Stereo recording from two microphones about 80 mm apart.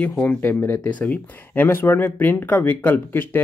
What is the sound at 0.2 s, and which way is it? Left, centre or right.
Speech, left.